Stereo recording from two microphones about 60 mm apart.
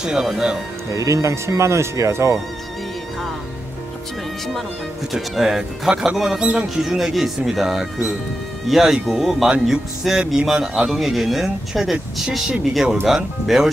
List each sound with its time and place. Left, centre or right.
0.0 s speech: centre
0.9 s speech: right
5.1 s speech: centre